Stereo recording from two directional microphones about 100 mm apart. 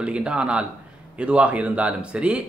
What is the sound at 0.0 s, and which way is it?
Speech, 10° right (ahead or behind).